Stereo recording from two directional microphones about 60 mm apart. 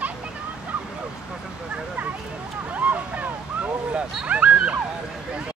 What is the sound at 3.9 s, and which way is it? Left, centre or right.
Dog, centre.